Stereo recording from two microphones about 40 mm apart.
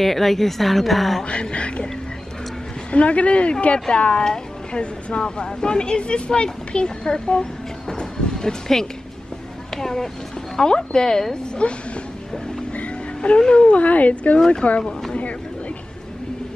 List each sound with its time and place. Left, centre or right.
0.0 s a woman's voice: centre
1.3 s speech: left
2.9 s a woman's voice: left
8.0 s a sound: centre
9.8 s speech: centre; by 11.8 s left
13.2 s a woman's voice: left
14.8 s speech: centre